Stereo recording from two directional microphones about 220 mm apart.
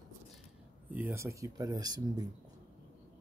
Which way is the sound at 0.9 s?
10° right (ahead or behind).